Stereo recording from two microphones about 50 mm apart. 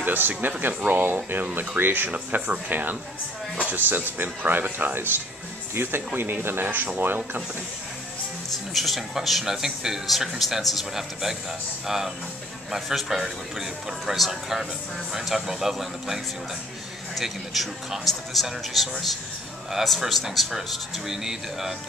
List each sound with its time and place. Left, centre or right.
0.0 s speech: right
8.7 s speech: centre
17.2 s speech: centre